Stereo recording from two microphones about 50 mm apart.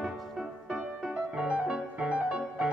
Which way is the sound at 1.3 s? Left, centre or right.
Right.